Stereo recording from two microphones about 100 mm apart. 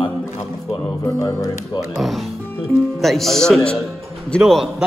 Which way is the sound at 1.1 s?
30° left (ahead or behind).